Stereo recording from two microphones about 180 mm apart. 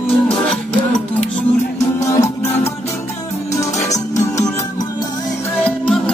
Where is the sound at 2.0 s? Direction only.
15° left (ahead or behind).